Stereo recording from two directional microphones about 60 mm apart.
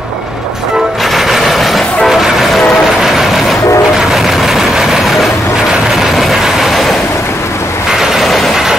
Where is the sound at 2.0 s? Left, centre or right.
Centre.